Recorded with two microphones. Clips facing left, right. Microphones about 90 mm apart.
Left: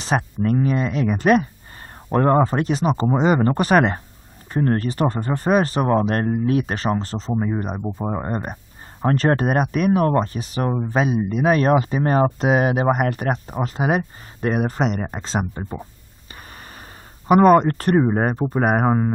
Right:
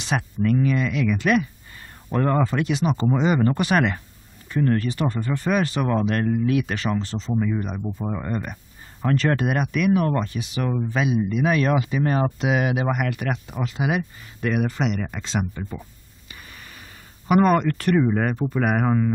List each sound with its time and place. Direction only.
0.0 s speech: 40° left (ahead or behind)
10.7 s speech: 30° left (ahead or behind)
11.0 s speech: 40° left (ahead or behind)
16.3 s a sound: 40° left (ahead or behind)
17.6 s speech: 40° left (ahead or behind)